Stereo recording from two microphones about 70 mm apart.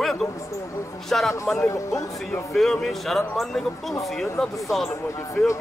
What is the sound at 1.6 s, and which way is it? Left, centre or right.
Speech, left.